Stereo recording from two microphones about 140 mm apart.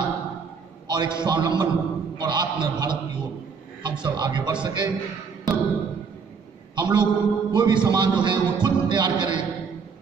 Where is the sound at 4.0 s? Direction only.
30° right (ahead or behind).